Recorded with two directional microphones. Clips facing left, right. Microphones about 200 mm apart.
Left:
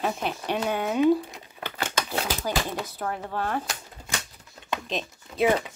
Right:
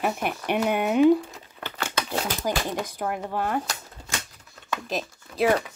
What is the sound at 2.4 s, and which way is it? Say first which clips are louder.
Speech: right 2 dB; 15° right (ahead or behind).